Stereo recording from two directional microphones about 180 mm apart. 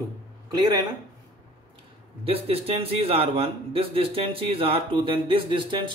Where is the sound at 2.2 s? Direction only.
30° right (ahead or behind).